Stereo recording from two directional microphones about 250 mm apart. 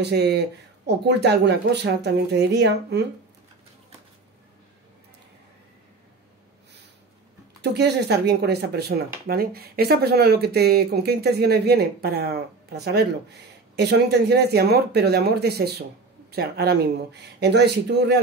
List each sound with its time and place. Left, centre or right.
0.0 s speech: right
7.6 s speech: right